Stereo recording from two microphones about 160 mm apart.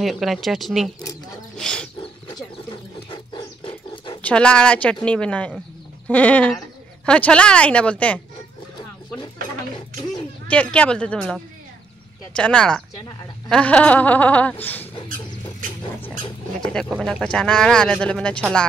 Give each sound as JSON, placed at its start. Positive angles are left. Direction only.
{"t": 0.0, "sound": "speech", "side_deg": 0}
{"t": 2.2, "sound": "dog", "side_deg": 25}
{"t": 4.2, "sound": "speech", "side_deg": 5}
{"t": 10.5, "sound": "speech", "side_deg": 10}
{"t": 17.0, "sound": "speech", "side_deg": 5}